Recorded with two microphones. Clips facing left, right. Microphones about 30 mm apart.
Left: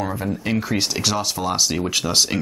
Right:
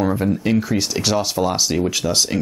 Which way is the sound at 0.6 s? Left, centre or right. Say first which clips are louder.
Right 3 dB; centre.